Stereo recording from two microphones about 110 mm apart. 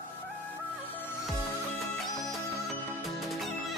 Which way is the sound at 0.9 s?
20° left (ahead or behind).